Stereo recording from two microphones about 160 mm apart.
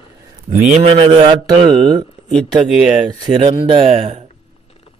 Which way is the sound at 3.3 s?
35° right (ahead or behind).